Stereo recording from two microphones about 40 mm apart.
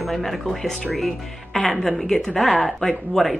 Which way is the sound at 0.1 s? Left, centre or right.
Centre.